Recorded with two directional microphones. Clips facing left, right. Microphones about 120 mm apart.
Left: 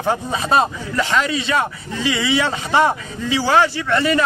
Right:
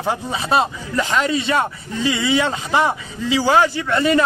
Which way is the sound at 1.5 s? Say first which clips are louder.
Even; 30° right (ahead or behind).